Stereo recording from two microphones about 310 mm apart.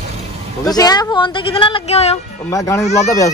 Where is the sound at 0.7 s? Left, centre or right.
Centre.